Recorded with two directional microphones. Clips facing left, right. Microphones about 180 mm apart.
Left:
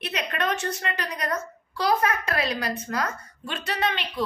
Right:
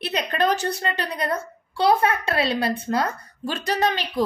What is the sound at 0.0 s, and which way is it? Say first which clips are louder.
A woman's voice: right 5 dB; 35° right (ahead or behind).